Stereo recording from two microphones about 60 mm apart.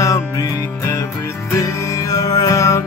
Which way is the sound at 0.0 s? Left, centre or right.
Left.